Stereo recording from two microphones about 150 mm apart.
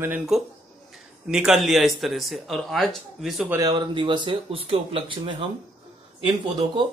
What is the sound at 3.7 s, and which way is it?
Speech, 30° right (ahead or behind).